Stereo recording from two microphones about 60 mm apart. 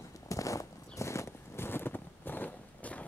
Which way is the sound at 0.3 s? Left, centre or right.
Left.